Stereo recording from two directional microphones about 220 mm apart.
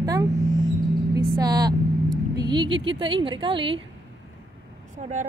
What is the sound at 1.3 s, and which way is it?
A woman's voice, 15° right (ahead or behind).